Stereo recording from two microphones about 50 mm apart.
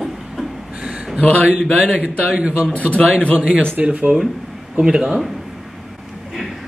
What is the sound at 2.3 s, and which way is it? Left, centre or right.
Speech, centre.